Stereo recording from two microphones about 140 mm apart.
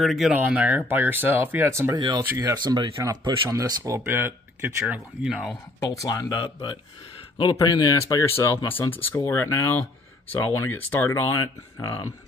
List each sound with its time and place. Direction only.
0.0 s speech: centre (ahead or behind)
0.4 s speech: 10° right (ahead or behind)
2.0 s speech: 30° right (ahead or behind); by 5.6 s 5° right (ahead or behind)
5.8 s speech: 25° left (ahead or behind)